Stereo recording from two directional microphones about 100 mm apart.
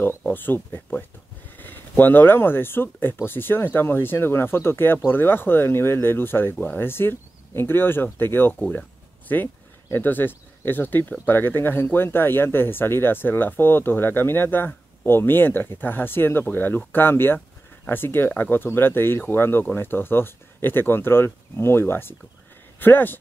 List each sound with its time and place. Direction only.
0.3 s speech: 20° left (ahead or behind)